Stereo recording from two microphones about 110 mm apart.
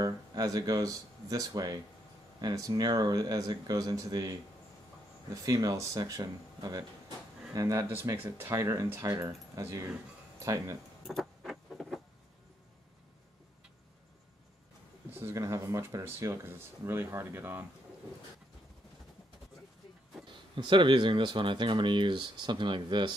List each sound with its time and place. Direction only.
0.0 s speech: 35° right (ahead or behind)
11.1 s vehicle: centre (ahead or behind)
15.0 s speech: 20° right (ahead or behind)
20.2 s speech: 45° right (ahead or behind)